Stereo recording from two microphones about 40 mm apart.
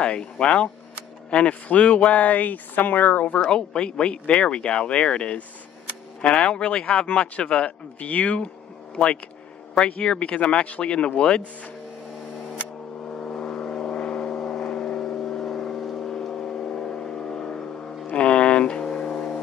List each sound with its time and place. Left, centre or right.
0.0 s speech: left
3.3 s speech: left
13.1 s vehicle: left
18.1 s a sound: left
18.9 s music: centre